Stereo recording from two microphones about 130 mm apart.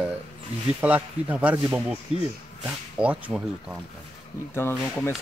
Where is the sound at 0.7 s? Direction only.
15° right (ahead or behind).